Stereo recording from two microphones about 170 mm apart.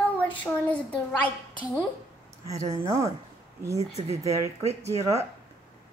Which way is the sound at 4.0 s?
40° right (ahead or behind).